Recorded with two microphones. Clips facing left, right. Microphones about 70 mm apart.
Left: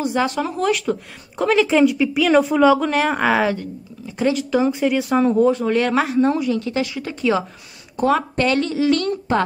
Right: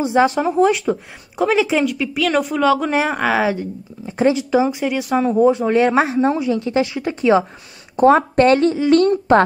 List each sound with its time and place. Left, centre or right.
0.0 s speech: right
0.8 s a woman's voice: centre
2.8 s speech: centre
3.1 s a woman's voice: centre
4.0 s speech: right
4.7 s a woman's voice: centre
5.4 s speech: centre; by 8.7 s right